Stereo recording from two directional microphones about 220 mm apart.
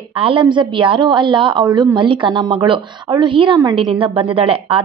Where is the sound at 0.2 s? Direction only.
20° right (ahead or behind).